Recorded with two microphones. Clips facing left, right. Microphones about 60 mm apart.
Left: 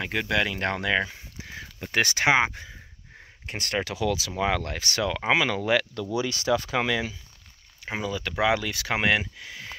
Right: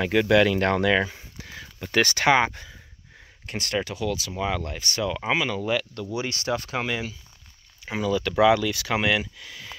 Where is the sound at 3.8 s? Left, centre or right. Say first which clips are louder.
Left 1 dB; left.